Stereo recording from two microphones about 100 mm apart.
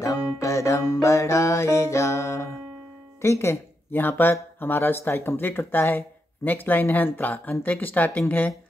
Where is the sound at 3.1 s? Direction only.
30° left (ahead or behind).